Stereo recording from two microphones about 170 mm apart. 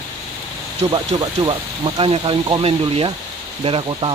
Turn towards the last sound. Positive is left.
turn(degrees=-30)  # may be behind; listen again after turning